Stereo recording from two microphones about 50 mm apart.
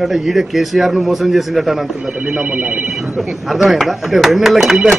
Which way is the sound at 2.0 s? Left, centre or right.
Right.